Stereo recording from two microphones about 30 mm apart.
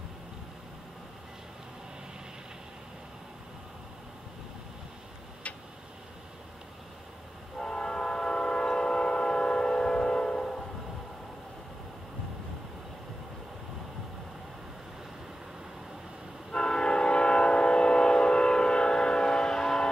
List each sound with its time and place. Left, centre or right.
7.5 s train: left
16.5 s train: left
19.3 s music: centre